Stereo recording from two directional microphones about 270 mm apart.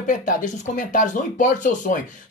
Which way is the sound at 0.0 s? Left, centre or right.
Left.